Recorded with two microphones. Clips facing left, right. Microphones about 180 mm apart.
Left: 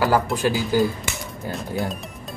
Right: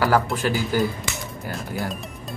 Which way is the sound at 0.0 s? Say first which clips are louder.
Left 1 dB; 15° left (ahead or behind).